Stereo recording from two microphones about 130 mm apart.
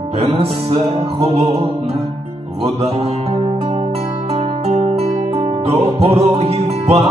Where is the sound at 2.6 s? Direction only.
50° right (ahead or behind).